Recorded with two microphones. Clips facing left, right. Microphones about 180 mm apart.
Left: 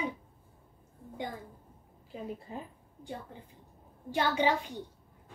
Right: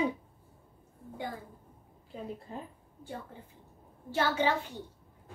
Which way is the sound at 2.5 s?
5° left (ahead or behind).